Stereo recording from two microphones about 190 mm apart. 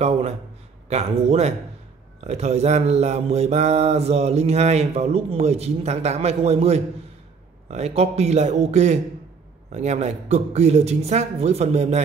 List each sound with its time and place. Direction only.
0.8 s mantra: 35° right (ahead or behind)